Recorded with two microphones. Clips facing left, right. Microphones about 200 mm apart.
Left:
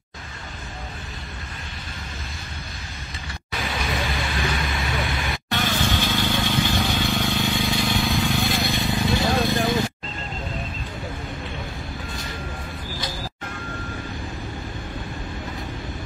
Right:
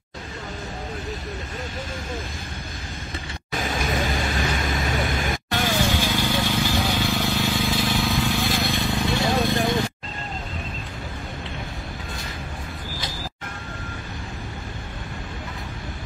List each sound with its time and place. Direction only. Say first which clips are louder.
3.5 s music: right 2 dB; 45° right (ahead or behind)
5.9 s vehicle: even; 10° right (ahead or behind)